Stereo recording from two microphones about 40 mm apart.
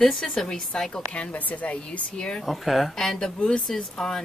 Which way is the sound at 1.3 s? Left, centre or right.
Left.